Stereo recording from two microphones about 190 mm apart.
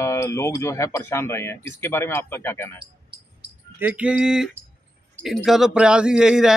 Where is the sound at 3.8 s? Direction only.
10° right (ahead or behind).